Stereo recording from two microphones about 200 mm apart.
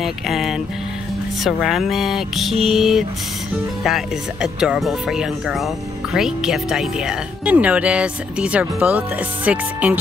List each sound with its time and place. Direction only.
0.0 s speech: centre (ahead or behind)